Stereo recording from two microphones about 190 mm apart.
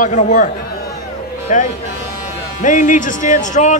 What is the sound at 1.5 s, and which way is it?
Speech, 40° left (ahead or behind).